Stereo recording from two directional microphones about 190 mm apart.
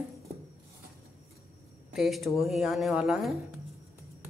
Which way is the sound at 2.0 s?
Centre (ahead or behind).